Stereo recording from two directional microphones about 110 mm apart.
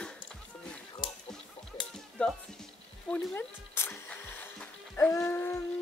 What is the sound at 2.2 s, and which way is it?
Speech, 10° left (ahead or behind).